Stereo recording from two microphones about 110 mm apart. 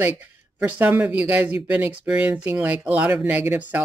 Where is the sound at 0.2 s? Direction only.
15° right (ahead or behind).